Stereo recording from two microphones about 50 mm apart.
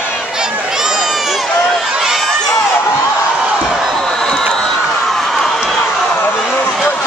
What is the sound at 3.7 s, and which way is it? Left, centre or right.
Slam, centre.